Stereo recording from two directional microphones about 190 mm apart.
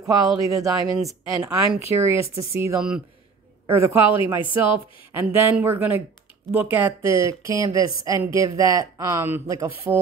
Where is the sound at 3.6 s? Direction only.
10° right (ahead or behind).